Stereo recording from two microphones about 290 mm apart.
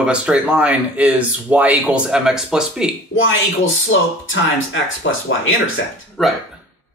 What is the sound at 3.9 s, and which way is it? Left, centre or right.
Speech, left.